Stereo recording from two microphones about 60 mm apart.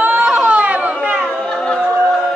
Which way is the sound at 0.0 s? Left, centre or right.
Right.